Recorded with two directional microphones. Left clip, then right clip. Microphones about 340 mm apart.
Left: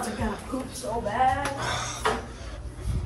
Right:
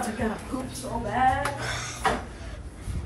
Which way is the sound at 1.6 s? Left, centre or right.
Centre.